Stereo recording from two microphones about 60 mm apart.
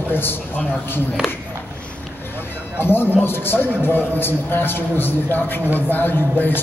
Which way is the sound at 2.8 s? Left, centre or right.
Left.